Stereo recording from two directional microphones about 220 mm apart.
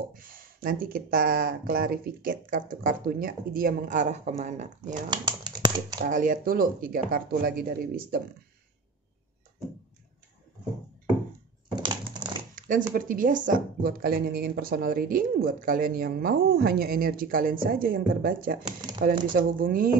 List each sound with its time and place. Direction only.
0.1 s speech: 40° right (ahead or behind)
5.1 s a sound: 20° right (ahead or behind)
5.9 s speech: 35° right (ahead or behind)
11.7 s crushing: 20° right (ahead or behind)
12.5 s speech: 35° right (ahead or behind)
18.7 s speech: 20° right (ahead or behind)
19.3 s speech: 40° right (ahead or behind)